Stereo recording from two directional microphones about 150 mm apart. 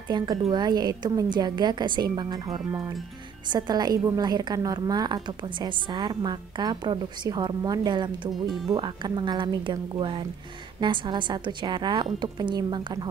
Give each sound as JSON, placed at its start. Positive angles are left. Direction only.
{"t": 0.1, "sound": "a woman's voice", "side_deg": -30}